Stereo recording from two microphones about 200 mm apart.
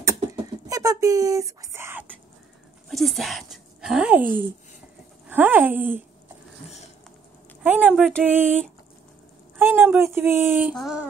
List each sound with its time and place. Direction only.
0.0 s a sound: 15° right (ahead or behind)
2.9 s speech: centre (ahead or behind)
7.6 s speech: 10° right (ahead or behind)
9.6 s speech: 10° right (ahead or behind)
10.7 s female singing: centre (ahead or behind)